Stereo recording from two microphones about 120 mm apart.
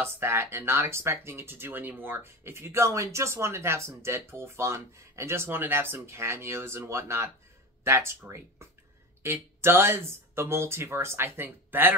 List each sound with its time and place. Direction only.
0.0 s speech: 20° right (ahead or behind)
9.2 s speech: 20° right (ahead or behind)